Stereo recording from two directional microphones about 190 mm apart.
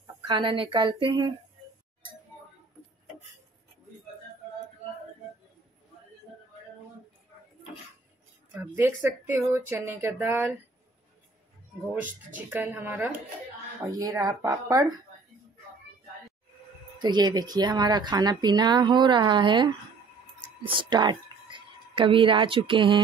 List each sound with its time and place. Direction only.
0.0 s speech: 25° right (ahead or behind)
8.5 s speech: 10° right (ahead or behind)
11.8 s speech: 10° right (ahead or behind)
17.0 s speech: 20° right (ahead or behind)